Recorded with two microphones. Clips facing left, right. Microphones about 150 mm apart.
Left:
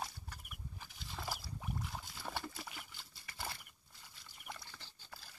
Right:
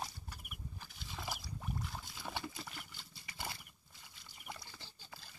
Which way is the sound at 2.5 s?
5° left (ahead or behind).